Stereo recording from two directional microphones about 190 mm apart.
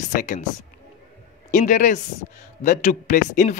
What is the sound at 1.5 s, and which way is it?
Speech, 40° left (ahead or behind).